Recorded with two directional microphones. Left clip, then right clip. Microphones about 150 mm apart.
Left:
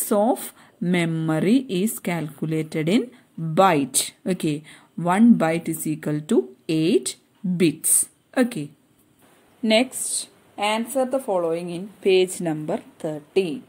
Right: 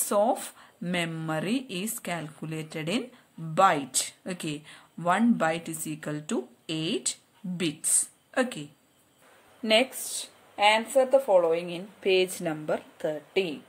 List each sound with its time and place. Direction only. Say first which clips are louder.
0.0 s speech: left 4 dB; 25° left (ahead or behind)